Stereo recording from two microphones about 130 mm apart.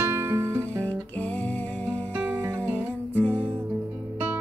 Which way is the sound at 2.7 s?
10° left (ahead or behind).